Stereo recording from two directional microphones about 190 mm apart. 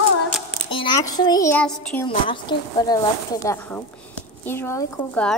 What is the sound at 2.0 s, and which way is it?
Speech, 25° left (ahead or behind).